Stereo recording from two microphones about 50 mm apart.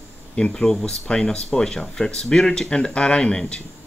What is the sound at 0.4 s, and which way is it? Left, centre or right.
Speech, centre.